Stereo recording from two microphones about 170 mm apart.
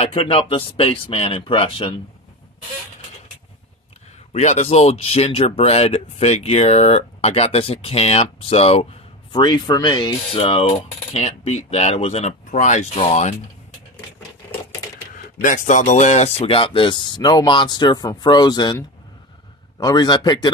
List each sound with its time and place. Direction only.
0.0 s speech: 35° left (ahead or behind)
4.3 s speech: 40° left (ahead or behind)
9.3 s speech: 25° left (ahead or behind)
15.4 s speech: 50° left (ahead or behind); by 20.5 s 25° left (ahead or behind)